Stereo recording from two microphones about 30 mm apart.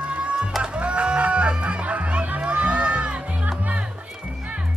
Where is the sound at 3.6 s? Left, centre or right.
Right.